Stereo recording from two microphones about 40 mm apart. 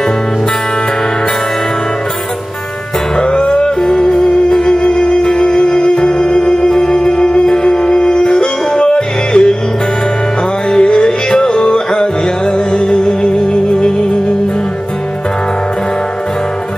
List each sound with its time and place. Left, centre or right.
3.2 s music: left
10.7 s music: left